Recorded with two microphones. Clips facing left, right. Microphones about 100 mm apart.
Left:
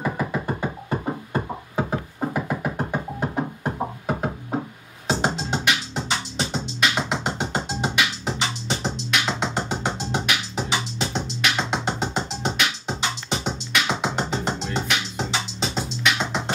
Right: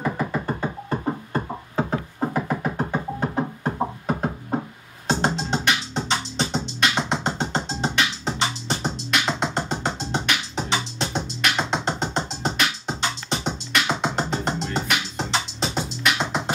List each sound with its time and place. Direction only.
0.8 s music: 10° left (ahead or behind)